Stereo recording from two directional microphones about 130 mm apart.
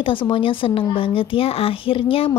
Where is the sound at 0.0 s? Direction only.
40° left (ahead or behind).